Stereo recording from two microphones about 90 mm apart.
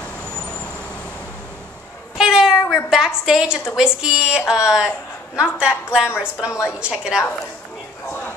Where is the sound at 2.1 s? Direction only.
5° right (ahead or behind).